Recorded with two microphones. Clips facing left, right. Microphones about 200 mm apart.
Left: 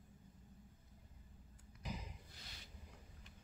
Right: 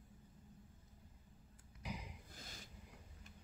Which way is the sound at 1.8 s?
10° right (ahead or behind).